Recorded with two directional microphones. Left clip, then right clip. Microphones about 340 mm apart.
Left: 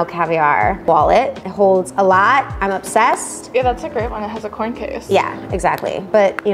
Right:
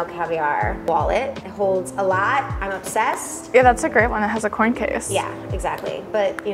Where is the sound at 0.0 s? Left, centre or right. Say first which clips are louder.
Left 7 dB; left.